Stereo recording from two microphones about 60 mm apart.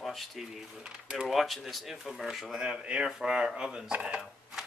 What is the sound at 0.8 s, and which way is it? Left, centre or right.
Speech, centre.